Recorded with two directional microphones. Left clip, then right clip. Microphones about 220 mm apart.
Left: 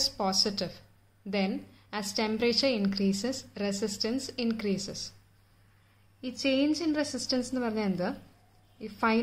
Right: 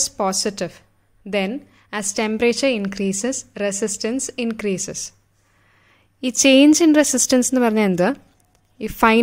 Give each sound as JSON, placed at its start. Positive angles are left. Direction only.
{"t": 0.0, "sound": "a woman's voice", "side_deg": -40}
{"t": 6.2, "sound": "a woman's voice", "side_deg": -50}